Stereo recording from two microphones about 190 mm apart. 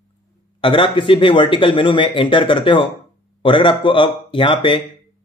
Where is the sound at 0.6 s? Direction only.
25° left (ahead or behind).